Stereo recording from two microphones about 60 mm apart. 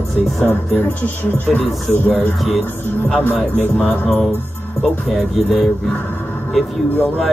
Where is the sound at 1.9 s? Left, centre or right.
Centre.